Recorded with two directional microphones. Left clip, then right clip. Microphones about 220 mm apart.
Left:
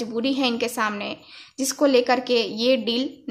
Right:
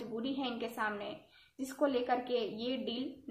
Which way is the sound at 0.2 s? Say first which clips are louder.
Left 16 dB; 50° left (ahead or behind).